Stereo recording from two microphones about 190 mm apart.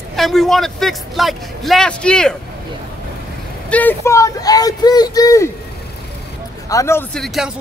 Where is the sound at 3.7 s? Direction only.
10° left (ahead or behind).